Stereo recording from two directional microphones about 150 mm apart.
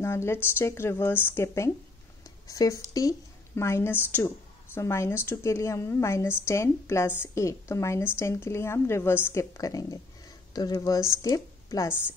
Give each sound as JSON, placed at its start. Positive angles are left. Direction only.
{"t": 0.0, "sound": "a woman's voice", "side_deg": 15}